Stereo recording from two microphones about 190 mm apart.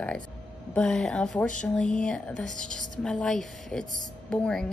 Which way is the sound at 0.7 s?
5° left (ahead or behind).